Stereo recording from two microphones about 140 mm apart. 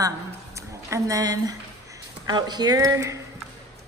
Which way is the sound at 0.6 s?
20° right (ahead or behind).